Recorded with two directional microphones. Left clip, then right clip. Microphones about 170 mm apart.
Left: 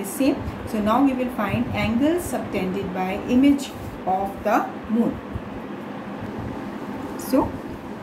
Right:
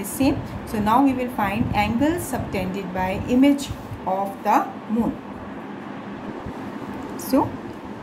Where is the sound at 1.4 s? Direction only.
45° right (ahead or behind).